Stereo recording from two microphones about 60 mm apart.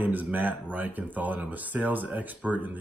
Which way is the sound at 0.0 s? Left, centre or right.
Right.